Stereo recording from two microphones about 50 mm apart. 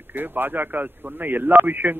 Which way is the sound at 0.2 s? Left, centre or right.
Right.